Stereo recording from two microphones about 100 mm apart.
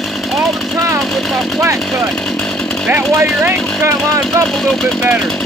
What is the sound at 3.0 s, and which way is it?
Speech, centre (ahead or behind).